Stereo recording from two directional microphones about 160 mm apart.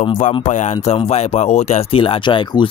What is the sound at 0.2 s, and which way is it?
Speech, 50° left (ahead or behind).